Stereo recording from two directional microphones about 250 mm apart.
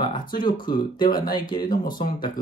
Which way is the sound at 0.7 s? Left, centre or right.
Centre.